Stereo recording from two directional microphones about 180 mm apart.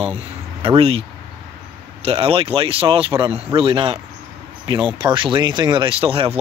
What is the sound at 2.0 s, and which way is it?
Speech, 30° right (ahead or behind).